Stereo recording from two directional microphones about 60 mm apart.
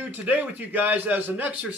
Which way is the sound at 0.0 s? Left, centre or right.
Right.